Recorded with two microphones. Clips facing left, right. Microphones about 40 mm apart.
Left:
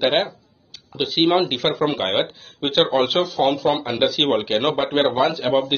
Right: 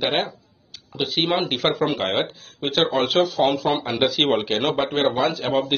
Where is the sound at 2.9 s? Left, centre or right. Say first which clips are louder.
Left 1 dB; centre.